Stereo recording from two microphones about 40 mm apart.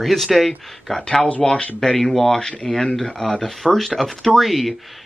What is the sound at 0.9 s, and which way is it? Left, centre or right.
Speech, centre.